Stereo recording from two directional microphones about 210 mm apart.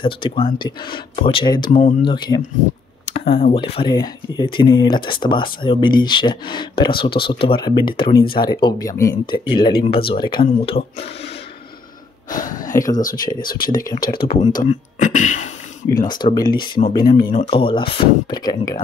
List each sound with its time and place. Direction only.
0.0 s speech: 25° left (ahead or behind)
1.7 s speech: 35° left (ahead or behind)
2.0 s speech: 20° left (ahead or behind)
8.1 s speech: 45° left (ahead or behind)
8.5 s speech: 20° left (ahead or behind)
12.3 s speech: 40° left (ahead or behind)
15.9 s speech: 20° left (ahead or behind)
16.5 s speech: 45° left (ahead or behind)
17.5 s speech: 25° left (ahead or behind)